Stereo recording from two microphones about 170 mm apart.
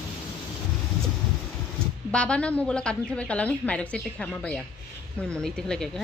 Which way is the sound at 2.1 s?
5° left (ahead or behind).